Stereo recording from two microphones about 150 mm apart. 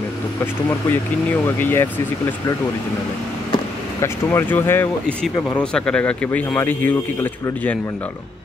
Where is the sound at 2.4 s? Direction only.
25° left (ahead or behind).